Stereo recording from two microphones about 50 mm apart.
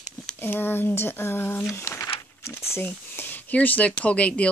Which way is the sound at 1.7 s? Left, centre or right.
Left.